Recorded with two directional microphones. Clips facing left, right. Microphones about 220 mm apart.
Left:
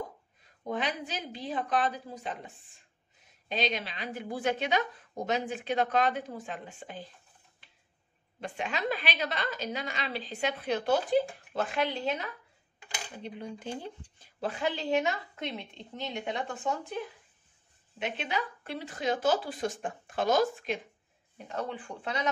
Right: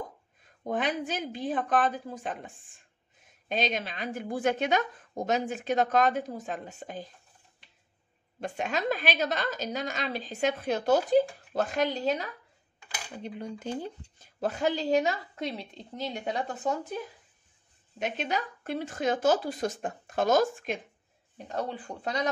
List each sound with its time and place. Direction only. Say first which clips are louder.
0.7 s a woman's voice: right 4 dB; 50° right (ahead or behind)
8.4 s a woman's voice: right 3 dB; 45° right (ahead or behind)
17.9 s a woman's voice: right 2 dB; 45° right (ahead or behind)
21.5 s speech: right 2 dB; 35° right (ahead or behind)